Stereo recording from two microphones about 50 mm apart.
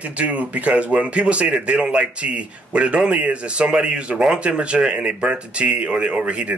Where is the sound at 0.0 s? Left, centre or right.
Right.